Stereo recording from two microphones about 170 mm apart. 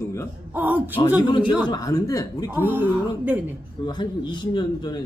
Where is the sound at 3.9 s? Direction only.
25° left (ahead or behind).